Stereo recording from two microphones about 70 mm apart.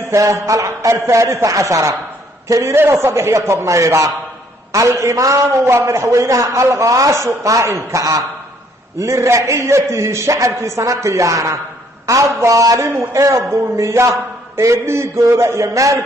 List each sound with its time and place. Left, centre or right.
0.1 s a man's voice: right